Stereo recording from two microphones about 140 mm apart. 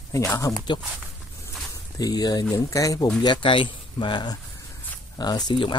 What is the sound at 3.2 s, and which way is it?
Speech, 35° left (ahead or behind).